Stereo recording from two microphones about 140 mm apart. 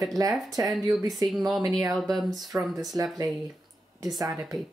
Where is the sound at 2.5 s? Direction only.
15° right (ahead or behind).